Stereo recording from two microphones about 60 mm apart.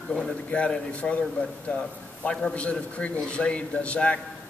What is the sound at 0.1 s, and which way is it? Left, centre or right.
A man's voice, centre.